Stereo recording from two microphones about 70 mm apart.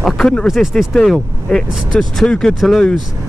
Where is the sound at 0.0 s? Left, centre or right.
Centre.